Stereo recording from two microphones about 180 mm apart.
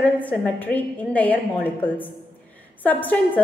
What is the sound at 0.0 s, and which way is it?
A woman's voice, 10° left (ahead or behind).